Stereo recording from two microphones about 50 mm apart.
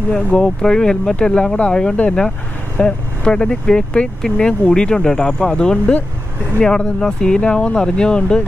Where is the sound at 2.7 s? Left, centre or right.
Centre.